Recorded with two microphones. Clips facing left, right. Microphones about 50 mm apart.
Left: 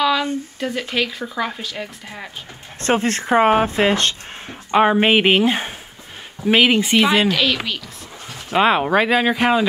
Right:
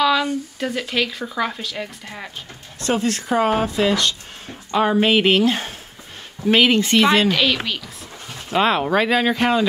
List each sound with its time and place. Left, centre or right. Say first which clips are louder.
0.6 s speech: left 1 dB; centre
2.8 s speech: left 2 dB; left; by 7.2 s centre
7.2 s speech: even; centre
8.3 s speech: left 2 dB; centre